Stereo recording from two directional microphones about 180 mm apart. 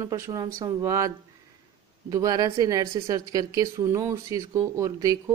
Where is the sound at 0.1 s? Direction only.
20° right (ahead or behind).